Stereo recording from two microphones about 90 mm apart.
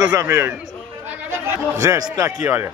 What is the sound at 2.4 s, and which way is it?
Speech, 20° right (ahead or behind).